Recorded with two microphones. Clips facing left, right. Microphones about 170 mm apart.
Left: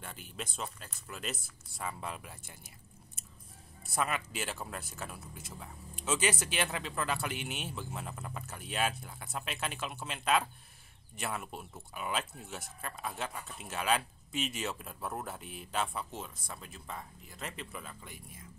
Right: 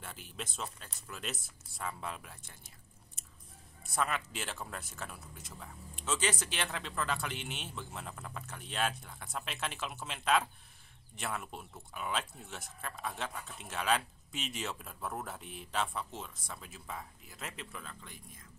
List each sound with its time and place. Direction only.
0.0 s speech: centre (ahead or behind)
3.8 s speech: 5° left (ahead or behind)